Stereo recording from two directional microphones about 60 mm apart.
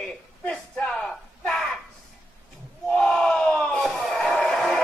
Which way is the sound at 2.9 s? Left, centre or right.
Centre.